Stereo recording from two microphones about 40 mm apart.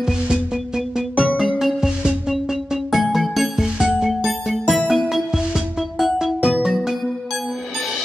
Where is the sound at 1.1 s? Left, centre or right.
Centre.